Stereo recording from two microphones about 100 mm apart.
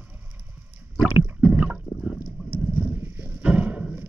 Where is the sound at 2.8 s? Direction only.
20° right (ahead or behind).